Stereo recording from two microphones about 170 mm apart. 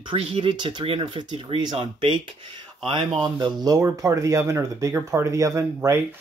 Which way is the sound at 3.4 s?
20° right (ahead or behind).